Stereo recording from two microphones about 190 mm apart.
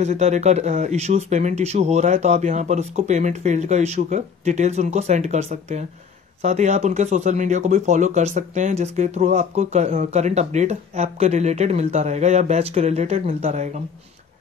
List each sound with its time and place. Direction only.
0.0 s speech: 35° right (ahead or behind)